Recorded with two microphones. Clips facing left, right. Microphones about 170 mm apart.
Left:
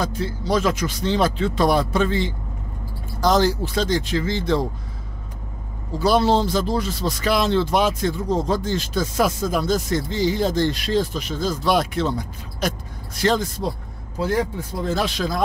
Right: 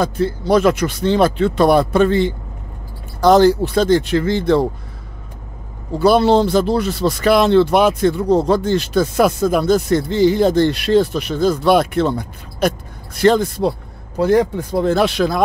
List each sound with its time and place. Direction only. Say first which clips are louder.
0.0 s speech: right 7 dB; 55° right (ahead or behind)
5.9 s speech: right 6 dB; 60° right (ahead or behind)